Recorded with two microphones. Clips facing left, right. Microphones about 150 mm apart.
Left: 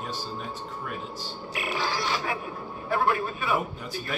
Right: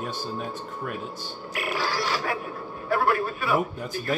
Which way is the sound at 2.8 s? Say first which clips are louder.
Right 2 dB; 40° right (ahead or behind).